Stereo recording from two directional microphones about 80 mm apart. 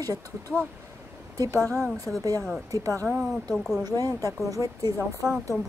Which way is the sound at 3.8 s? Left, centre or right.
Right.